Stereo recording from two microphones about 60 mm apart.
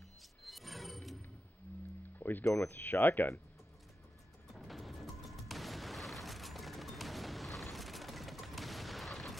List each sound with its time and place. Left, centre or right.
0.4 s music: centre
2.1 s music: left
2.4 s speech: left
2.8 s speech: left
4.6 s music: centre